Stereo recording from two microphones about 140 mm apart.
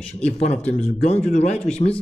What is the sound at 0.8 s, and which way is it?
Speech, 50° left (ahead or behind).